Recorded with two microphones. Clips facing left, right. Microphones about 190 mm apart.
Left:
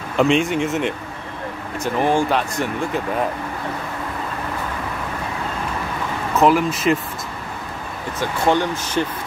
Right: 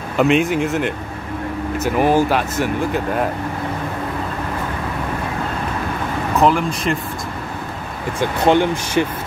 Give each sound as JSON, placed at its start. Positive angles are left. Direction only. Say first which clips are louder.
{"t": 0.2, "sound": "speech", "louder": "right 2 dB", "side_deg": 0}
{"t": 6.4, "sound": "speech", "louder": "left 2 dB", "side_deg": 5}
{"t": 8.5, "sound": "speech", "louder": "right 4 dB", "side_deg": -20}